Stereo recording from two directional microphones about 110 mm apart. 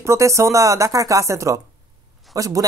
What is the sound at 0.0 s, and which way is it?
Speech, 25° right (ahead or behind).